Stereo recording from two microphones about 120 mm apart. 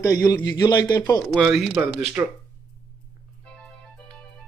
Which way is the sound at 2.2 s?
15° right (ahead or behind).